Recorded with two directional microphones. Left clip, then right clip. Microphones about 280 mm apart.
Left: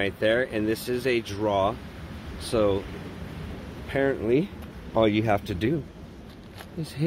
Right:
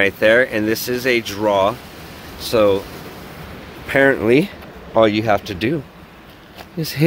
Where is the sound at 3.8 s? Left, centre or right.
Right.